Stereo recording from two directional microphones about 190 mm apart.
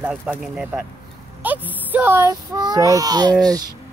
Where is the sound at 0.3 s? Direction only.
5° right (ahead or behind); by 3.3 s 20° right (ahead or behind).